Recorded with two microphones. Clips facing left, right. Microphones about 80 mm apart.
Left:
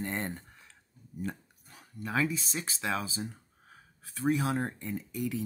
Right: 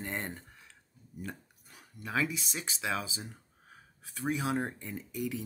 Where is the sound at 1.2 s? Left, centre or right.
Centre.